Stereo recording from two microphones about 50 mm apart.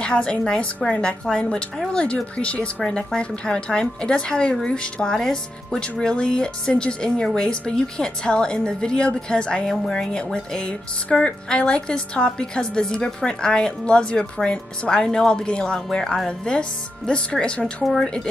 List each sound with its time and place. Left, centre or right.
0.0 s speech: left
1.5 s a woman's voice: centre